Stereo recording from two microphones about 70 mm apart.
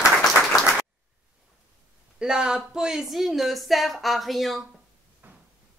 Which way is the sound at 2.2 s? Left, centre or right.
Centre.